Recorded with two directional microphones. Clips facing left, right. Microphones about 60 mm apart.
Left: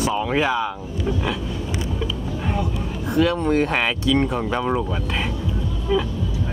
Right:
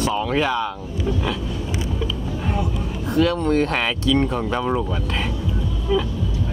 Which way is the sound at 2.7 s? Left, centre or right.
Centre.